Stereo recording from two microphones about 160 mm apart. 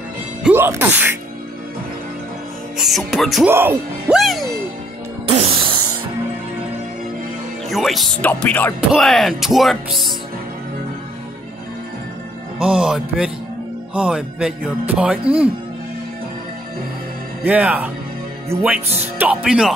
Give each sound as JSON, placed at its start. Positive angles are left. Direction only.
{"t": 0.4, "sound": "speech", "side_deg": -10}
{"t": 2.8, "sound": "speech", "side_deg": 0}
{"t": 3.4, "sound": "speech", "side_deg": -15}
{"t": 4.2, "sound": "music", "side_deg": 0}
{"t": 5.2, "sound": "music", "side_deg": -40}
{"t": 7.7, "sound": "speech", "side_deg": 0}
{"t": 12.6, "sound": "speech", "side_deg": -5}
{"t": 17.5, "sound": "speech", "side_deg": -10}
{"t": 19.1, "sound": "speech", "side_deg": -5}